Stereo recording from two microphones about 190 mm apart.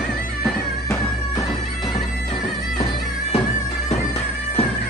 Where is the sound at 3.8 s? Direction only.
35° left (ahead or behind).